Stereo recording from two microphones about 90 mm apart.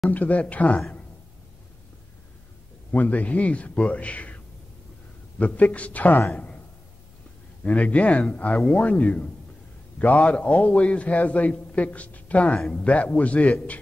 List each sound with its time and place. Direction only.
0.1 s a man's voice: 15° left (ahead or behind)
2.9 s a man's voice: 20° left (ahead or behind)
5.4 s a man's voice: 15° left (ahead or behind)
6.3 s a sound: 15° left (ahead or behind)
7.6 s a man's voice: 15° left (ahead or behind)